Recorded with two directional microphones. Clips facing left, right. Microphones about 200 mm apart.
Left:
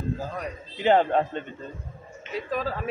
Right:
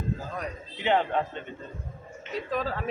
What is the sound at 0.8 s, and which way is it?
Speech, 40° left (ahead or behind).